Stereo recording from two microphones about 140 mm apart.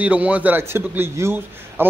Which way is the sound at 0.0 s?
10° right (ahead or behind).